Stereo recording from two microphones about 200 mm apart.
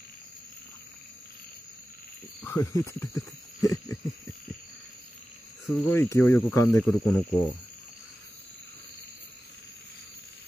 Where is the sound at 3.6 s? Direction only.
15° left (ahead or behind).